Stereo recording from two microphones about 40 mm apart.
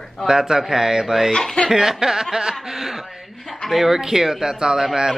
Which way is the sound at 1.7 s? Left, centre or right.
Centre.